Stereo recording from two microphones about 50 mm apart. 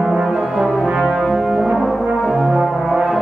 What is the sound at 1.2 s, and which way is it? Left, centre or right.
Brass instrument, centre.